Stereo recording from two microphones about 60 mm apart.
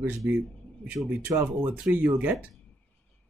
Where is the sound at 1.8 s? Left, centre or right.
Right.